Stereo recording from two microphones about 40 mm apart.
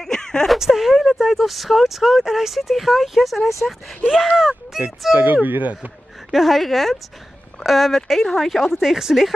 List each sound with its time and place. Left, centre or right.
0.0 s a sound: centre
0.6 s speech: centre
5.1 s speech: right
6.3 s speech: centre